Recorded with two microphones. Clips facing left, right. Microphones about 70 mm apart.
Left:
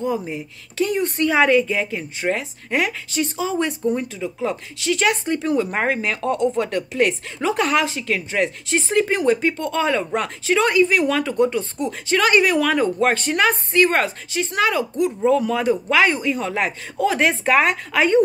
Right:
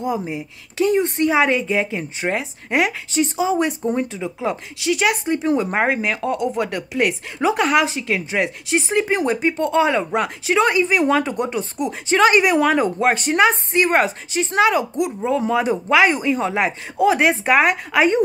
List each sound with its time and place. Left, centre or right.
0.0 s speech: centre
0.8 s speech: right